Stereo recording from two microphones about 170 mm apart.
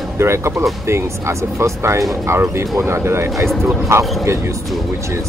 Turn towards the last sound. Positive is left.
turn(degrees=-15)  # may be behind; listen again after turning